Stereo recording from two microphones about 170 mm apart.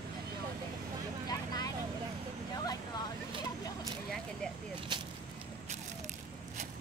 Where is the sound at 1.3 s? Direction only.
25° left (ahead or behind).